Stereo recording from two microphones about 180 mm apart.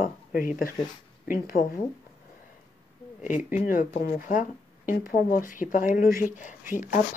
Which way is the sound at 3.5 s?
45° left (ahead or behind).